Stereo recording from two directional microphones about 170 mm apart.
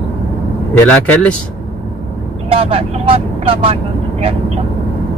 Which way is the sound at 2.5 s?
35° right (ahead or behind).